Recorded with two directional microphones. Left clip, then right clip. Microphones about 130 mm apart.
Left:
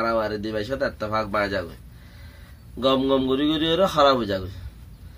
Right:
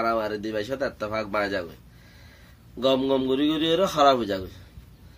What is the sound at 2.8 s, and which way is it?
Speech, 15° right (ahead or behind).